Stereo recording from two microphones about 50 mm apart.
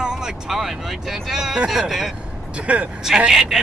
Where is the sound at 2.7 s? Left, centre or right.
Right.